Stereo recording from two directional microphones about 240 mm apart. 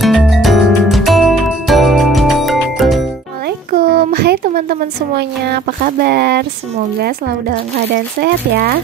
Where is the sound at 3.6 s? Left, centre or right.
Right.